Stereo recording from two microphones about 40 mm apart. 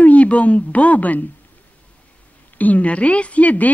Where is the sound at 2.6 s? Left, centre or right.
Left.